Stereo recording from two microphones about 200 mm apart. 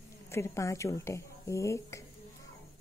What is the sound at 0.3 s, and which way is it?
Speech, 15° left (ahead or behind).